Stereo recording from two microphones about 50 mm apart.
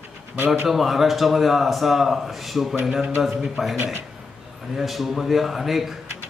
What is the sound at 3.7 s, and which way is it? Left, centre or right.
Speech, right.